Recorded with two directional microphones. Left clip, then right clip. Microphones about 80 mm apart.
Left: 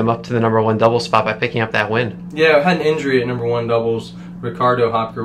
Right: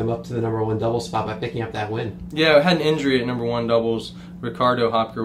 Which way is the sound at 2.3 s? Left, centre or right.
Left.